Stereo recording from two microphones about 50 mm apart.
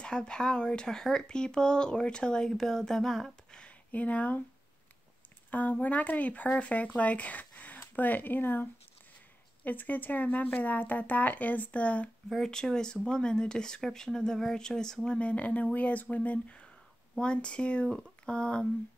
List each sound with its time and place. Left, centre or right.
0.0 s speech: centre
3.5 s a sound: left
5.5 s speech: left
9.7 s speech: left
12.4 s speech: centre
15.0 s speech: left
17.8 s speech: centre